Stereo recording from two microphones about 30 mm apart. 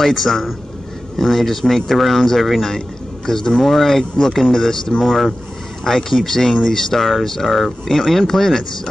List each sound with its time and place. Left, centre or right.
0.0 s a man's voice: centre
3.6 s speech: centre
5.0 s a man's voice: centre
5.9 s speech: centre